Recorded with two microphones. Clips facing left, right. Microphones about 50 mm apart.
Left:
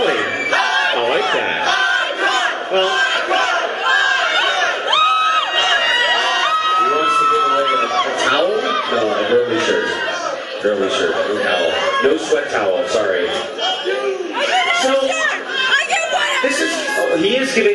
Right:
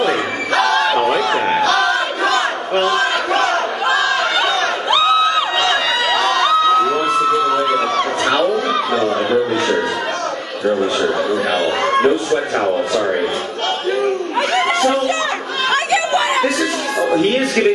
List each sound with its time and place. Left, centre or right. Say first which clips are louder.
0.0 s crowd: left 1 dB; left
2.8 s battle cry: even; left
8.9 s music: left 2 dB; left
11.0 s a man's voice: even; left
14.5 s a sound: left 1 dB; left
17.1 s speech: right 1 dB; left